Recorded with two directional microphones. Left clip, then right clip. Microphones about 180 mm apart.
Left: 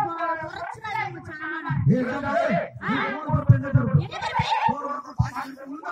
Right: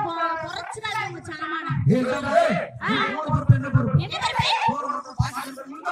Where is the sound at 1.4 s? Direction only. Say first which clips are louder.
Right 2 dB; 40° right (ahead or behind).